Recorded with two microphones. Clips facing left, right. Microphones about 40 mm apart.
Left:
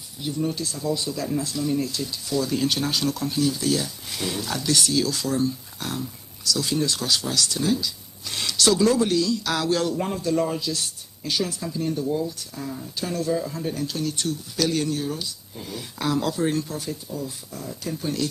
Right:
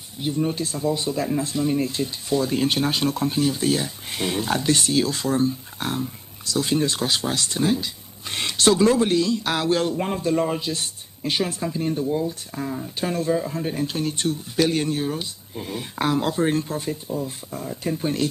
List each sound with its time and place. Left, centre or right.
0.2 s speech: right